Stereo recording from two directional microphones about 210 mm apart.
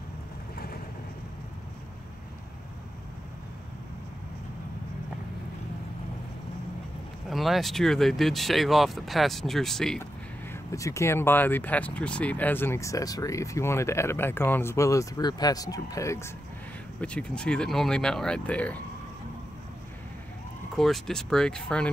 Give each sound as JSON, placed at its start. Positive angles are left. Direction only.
{"t": 7.2, "sound": "speech", "side_deg": 0}
{"t": 10.5, "sound": "speech", "side_deg": 15}
{"t": 20.7, "sound": "speech", "side_deg": 0}